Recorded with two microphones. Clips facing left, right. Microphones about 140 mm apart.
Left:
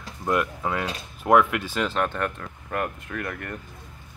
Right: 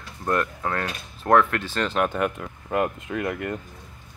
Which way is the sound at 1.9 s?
10° right (ahead or behind).